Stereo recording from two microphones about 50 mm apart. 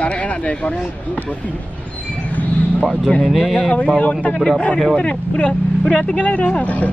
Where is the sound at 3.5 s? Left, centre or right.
Left.